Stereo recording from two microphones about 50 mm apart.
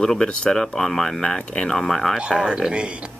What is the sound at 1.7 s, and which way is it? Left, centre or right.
Speech, centre.